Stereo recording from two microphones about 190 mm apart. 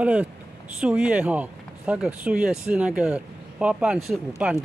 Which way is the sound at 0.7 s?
5° right (ahead or behind).